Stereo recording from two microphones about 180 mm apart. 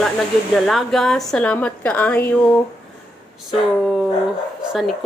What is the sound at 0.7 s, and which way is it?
A woman's voice, centre (ahead or behind).